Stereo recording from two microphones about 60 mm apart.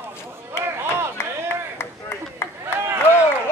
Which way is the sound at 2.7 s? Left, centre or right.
Right.